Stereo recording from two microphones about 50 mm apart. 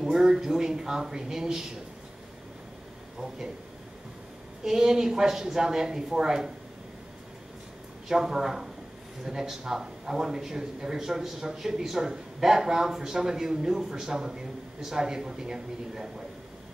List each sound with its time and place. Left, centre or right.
0.0 s a man's voice: centre
4.6 s a man's voice: centre
8.1 s a man's voice: centre